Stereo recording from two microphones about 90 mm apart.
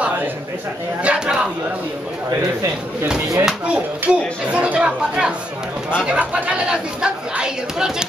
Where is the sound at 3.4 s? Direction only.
15° right (ahead or behind).